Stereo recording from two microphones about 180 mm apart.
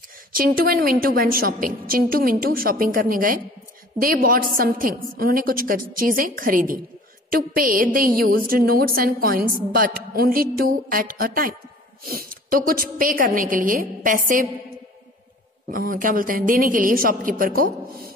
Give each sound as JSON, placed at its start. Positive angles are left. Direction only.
{"t": 0.3, "sound": "a woman's voice", "side_deg": -55}
{"t": 15.7, "sound": "a woman's voice", "side_deg": -50}